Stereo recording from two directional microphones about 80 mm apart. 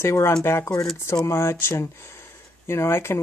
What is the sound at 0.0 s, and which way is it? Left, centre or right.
Speech, left.